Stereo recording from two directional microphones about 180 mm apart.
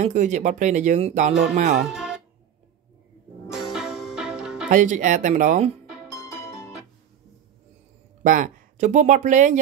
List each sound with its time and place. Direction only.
0.0 s speech: 45° right (ahead or behind)
1.9 s music: 5° right (ahead or behind)
3.4 s music: centre (ahead or behind)
4.6 s speech: 45° right (ahead or behind)
6.0 s music: 15° left (ahead or behind)
8.2 s speech: 50° right (ahead or behind)